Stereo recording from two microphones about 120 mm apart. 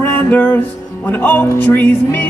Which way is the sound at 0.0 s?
15° left (ahead or behind).